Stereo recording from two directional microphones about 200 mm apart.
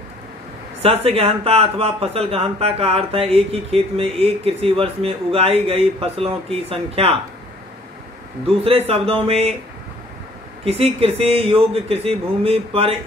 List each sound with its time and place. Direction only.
0.8 s speech: 30° right (ahead or behind)
8.5 s speech: 30° right (ahead or behind)
10.6 s speech: 30° right (ahead or behind)